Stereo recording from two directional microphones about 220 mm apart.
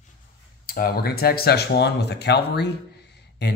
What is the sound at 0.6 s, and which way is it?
Speech, 40° left (ahead or behind).